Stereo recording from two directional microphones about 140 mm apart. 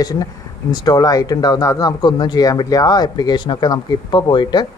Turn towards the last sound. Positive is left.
turn(degrees=35)  # may be behind; listen again after turning